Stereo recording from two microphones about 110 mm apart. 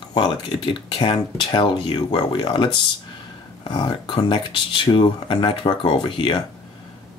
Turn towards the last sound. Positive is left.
turn(degrees=45)  # may be behind; listen again after turning